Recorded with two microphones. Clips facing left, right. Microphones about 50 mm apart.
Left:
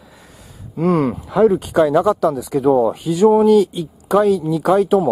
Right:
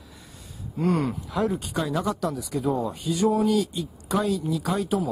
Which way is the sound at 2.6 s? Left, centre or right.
Left.